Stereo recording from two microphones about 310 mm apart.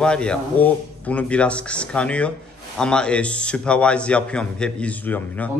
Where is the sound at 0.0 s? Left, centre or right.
Centre.